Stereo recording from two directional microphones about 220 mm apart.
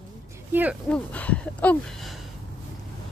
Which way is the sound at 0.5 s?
10° right (ahead or behind).